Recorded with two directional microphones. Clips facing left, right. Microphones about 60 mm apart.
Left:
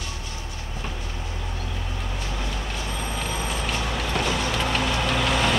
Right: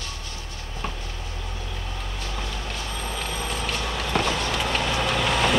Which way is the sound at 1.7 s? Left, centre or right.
Centre.